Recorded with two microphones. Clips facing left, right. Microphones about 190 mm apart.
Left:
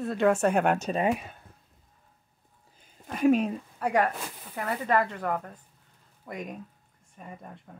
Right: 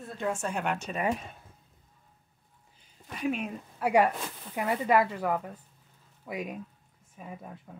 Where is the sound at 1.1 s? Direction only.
10° left (ahead or behind).